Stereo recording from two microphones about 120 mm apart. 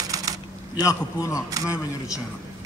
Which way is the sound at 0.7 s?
30° left (ahead or behind).